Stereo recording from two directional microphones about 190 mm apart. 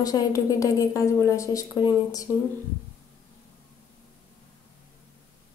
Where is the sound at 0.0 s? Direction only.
20° left (ahead or behind).